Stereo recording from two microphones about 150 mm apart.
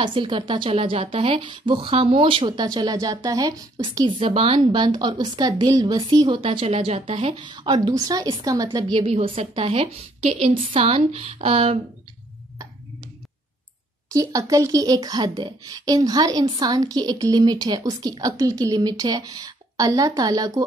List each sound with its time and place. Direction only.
0.0 s speech: 35° right (ahead or behind)
4.7 s speech: 30° right (ahead or behind)
14.1 s speech: 20° right (ahead or behind)